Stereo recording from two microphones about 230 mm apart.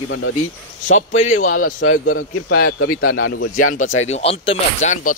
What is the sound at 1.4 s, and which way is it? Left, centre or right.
A man's voice, left.